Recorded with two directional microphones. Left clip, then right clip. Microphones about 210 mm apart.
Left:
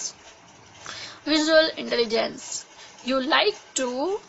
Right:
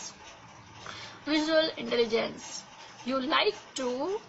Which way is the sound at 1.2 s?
50° left (ahead or behind).